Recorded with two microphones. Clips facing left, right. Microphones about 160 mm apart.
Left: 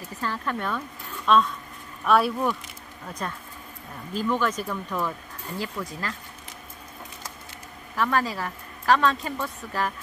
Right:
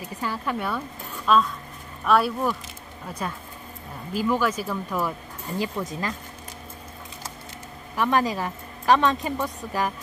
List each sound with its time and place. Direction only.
0.0 s a woman's voice: 10° right (ahead or behind)
5.6 s a woman's voice: 20° right (ahead or behind)
7.9 s a woman's voice: 15° right (ahead or behind)